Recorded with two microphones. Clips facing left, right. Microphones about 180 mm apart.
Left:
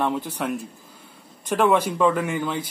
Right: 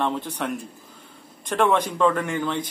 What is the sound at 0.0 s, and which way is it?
Speech, 5° left (ahead or behind).